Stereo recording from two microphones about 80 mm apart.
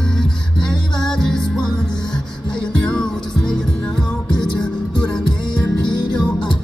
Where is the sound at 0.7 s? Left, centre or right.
Centre.